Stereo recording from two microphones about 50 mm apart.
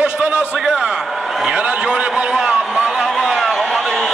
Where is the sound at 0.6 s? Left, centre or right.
Centre.